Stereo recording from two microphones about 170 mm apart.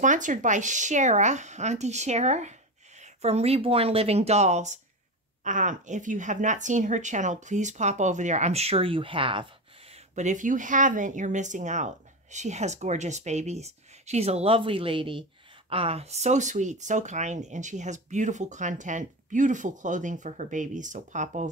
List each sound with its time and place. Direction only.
0.0 s speech: 50° right (ahead or behind); by 9.5 s 30° right (ahead or behind)
10.1 s speech: 45° right (ahead or behind)